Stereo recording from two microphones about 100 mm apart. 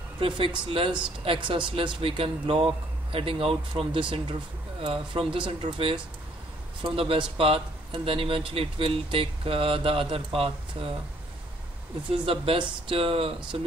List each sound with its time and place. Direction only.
0.4 s speech: 60° right (ahead or behind)
12.3 s speech: 60° right (ahead or behind)